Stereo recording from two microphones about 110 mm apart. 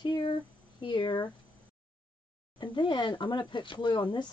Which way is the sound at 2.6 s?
45° left (ahead or behind).